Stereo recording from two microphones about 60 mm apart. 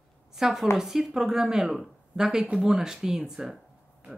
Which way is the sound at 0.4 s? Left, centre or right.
Centre.